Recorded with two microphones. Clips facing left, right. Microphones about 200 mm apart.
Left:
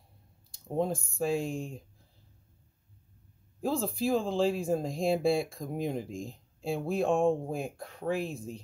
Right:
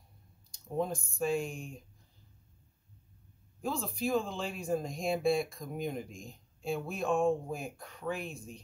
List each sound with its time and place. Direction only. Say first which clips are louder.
0.7 s speech: left 3 dB; 30° left (ahead or behind)
3.6 s speech: left 5 dB; 30° left (ahead or behind)